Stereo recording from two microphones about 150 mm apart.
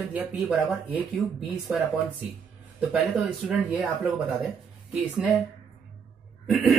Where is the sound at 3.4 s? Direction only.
10° right (ahead or behind).